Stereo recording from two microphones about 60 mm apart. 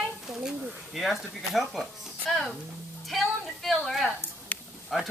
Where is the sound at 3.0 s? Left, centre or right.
Centre.